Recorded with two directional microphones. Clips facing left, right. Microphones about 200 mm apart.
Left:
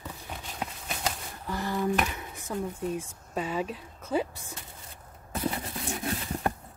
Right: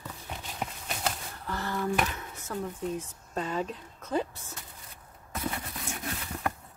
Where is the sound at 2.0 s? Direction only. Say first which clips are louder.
Even; 10° left (ahead or behind).